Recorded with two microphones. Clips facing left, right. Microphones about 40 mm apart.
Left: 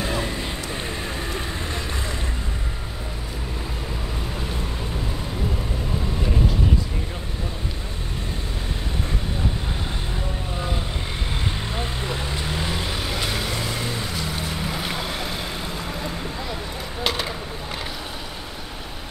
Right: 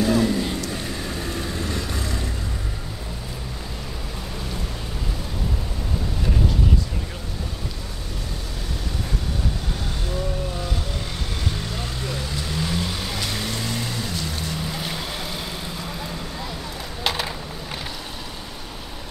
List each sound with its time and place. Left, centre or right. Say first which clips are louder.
0.0 s vehicle: right 6 dB; left
11.4 s vehicle: left 1 dB; left; by 15.4 s centre
17.0 s a sound: even; centre